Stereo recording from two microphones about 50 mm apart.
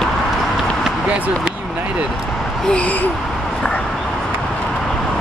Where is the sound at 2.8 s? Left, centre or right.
Left.